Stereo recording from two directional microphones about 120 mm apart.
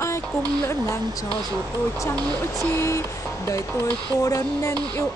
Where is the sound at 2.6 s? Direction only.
25° left (ahead or behind).